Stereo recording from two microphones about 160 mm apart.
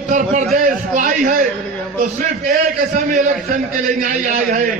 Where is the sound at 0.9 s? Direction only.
55° right (ahead or behind).